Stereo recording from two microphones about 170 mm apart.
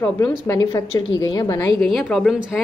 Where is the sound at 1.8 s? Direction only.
5° left (ahead or behind).